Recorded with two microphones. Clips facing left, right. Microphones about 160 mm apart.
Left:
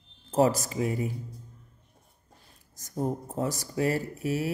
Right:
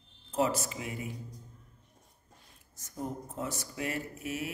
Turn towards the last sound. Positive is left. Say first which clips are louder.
# left 7 dB
turn(degrees=35)  # may be behind; listen again after turning